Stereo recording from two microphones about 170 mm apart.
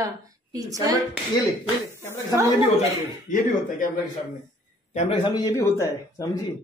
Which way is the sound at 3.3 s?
50° left (ahead or behind).